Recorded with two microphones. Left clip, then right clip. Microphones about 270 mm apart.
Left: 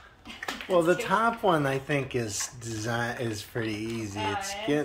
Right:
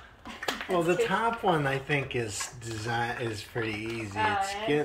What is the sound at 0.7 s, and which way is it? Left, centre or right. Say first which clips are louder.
Speech: left 3 dB; centre.